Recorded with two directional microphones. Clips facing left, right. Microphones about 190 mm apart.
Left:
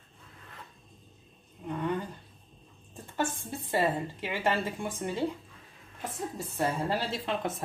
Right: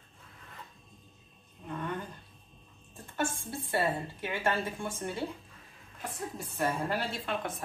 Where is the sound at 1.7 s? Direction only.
15° left (ahead or behind).